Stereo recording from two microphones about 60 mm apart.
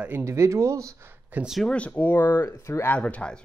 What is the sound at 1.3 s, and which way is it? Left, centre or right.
Speech, right.